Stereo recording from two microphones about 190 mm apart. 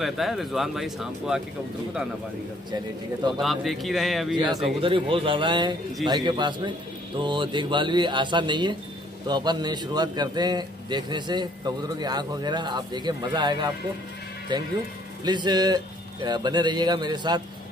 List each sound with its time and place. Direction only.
0.0 s speech: centre (ahead or behind)
3.3 s speech: centre (ahead or behind)
4.8 s a man's voice: 25° right (ahead or behind)